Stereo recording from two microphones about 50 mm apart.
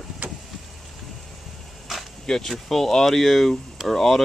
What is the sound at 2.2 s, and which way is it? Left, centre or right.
Speech, centre.